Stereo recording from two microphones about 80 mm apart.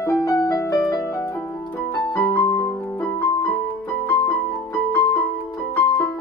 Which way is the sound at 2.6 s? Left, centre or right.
Left.